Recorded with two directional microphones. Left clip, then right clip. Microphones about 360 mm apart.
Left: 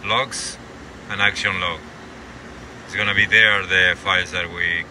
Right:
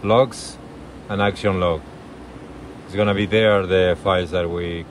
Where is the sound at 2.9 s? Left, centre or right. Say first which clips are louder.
Left 3 dB; centre.